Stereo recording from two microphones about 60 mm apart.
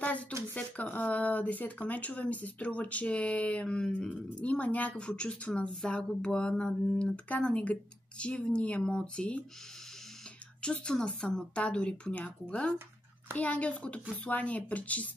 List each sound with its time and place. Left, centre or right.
0.6 s speech: left
10.6 s speech: centre